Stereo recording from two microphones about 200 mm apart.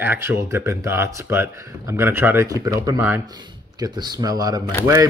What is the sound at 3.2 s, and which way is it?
Speech, 20° right (ahead or behind).